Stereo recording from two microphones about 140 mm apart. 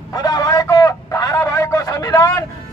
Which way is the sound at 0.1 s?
25° left (ahead or behind).